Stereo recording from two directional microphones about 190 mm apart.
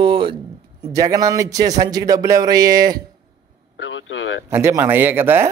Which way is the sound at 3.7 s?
85° left.